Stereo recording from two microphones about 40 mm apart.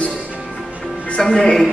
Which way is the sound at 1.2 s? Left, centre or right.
Centre.